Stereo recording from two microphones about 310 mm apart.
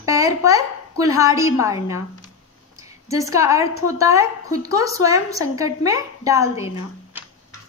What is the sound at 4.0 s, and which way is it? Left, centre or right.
A woman's voice, centre.